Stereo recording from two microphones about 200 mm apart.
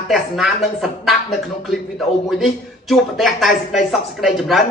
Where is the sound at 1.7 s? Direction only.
Centre (ahead or behind).